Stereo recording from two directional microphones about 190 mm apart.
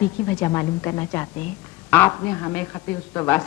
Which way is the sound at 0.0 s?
5° left (ahead or behind).